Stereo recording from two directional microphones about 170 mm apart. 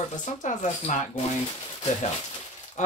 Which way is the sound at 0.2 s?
45° left (ahead or behind).